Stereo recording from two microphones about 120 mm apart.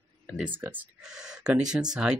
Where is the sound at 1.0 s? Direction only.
5° right (ahead or behind).